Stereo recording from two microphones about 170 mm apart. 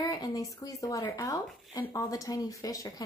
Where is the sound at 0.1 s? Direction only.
20° left (ahead or behind).